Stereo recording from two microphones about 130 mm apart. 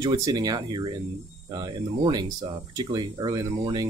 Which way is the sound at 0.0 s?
30° right (ahead or behind).